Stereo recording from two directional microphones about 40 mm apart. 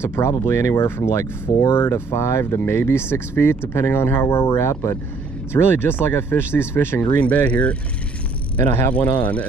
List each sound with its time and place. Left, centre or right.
0.0 s speech: left
5.5 s speech: left
7.2 s speech: left
8.9 s speech: left